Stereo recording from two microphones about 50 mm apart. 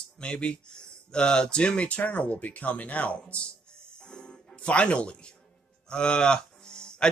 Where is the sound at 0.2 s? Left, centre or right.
Left.